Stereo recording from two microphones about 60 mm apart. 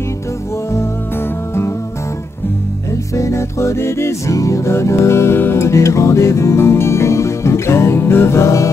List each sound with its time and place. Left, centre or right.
3.2 s music: left
5.7 s music: left